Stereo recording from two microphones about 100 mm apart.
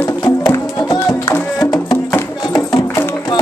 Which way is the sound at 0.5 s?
35° left (ahead or behind).